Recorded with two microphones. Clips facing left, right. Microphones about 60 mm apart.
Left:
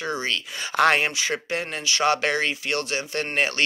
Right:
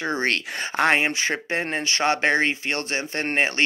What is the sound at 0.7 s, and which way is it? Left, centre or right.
Speech, right.